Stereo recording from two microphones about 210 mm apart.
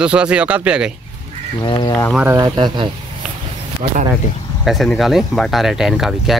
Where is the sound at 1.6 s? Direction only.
20° left (ahead or behind).